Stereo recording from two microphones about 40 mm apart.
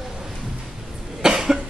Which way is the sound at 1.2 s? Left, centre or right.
Centre.